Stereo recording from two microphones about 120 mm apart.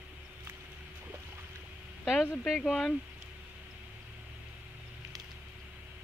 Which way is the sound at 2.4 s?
Centre (ahead or behind).